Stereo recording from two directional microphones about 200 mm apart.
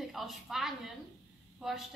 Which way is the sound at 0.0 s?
Centre (ahead or behind).